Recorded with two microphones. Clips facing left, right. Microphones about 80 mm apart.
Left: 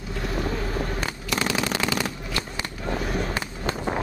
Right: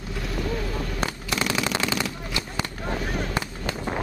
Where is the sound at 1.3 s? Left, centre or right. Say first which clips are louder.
Left 1 dB; left.